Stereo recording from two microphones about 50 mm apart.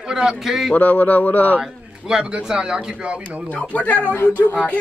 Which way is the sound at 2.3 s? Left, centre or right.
Centre.